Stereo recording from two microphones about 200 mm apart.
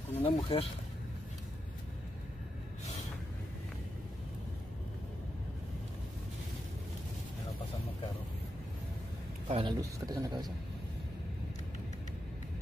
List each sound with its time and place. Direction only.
0.2 s speech: 30° left (ahead or behind)
9.5 s speech: 25° right (ahead or behind)